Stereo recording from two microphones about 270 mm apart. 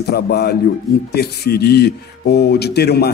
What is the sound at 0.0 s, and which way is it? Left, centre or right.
A man's voice, left.